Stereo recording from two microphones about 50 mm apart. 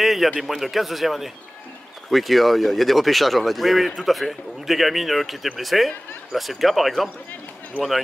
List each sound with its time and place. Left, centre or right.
0.0 s a sound: centre
0.4 s speech: centre
7.8 s speech: left